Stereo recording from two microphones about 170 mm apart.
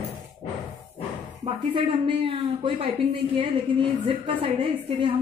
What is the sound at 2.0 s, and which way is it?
A woman's voice, 30° right (ahead or behind).